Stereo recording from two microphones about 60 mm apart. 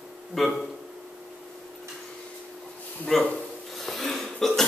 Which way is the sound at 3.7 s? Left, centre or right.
Centre.